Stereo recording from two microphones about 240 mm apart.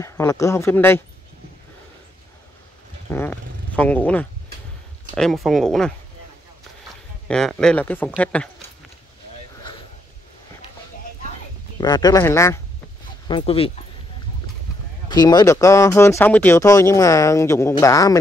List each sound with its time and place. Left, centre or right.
0.0 s speech: centre
3.1 s speech: centre
7.2 s speech: centre
11.8 s speech: centre
13.3 s speech: left
15.0 s speech: centre